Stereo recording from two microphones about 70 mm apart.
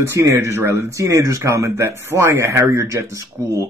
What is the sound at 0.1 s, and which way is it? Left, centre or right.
Speech, right.